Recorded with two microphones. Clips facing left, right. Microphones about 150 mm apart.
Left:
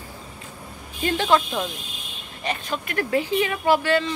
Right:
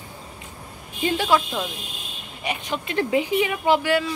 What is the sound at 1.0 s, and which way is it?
Speech, 10° right (ahead or behind).